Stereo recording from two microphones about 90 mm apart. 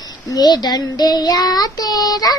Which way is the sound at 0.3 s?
50° left (ahead or behind).